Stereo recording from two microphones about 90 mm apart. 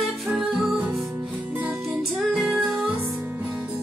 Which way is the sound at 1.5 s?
20° right (ahead or behind).